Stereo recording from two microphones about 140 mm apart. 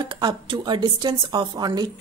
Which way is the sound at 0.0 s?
35° right (ahead or behind).